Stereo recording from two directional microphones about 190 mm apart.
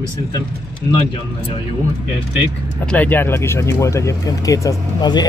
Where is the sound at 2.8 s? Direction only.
5° left (ahead or behind).